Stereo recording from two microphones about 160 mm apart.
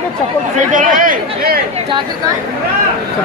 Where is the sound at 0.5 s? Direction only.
55° right (ahead or behind).